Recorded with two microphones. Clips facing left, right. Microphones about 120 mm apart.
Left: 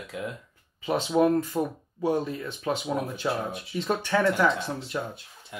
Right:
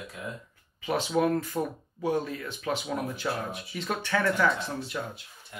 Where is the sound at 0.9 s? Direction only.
25° left (ahead or behind).